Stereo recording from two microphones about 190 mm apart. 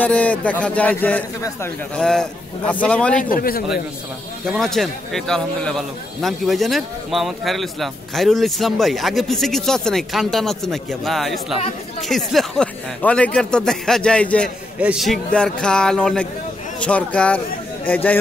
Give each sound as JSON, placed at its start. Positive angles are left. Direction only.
{"t": 0.0, "sound": "a man's voice", "side_deg": 5}
{"t": 3.2, "sound": "a man's voice", "side_deg": 50}
{"t": 4.5, "sound": "a man's voice", "side_deg": 0}